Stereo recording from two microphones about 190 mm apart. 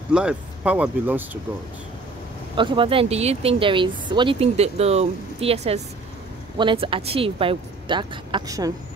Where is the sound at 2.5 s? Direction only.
25° right (ahead or behind).